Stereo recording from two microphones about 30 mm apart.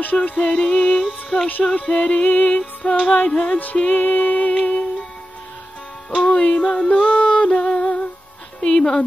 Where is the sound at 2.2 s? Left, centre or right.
Left.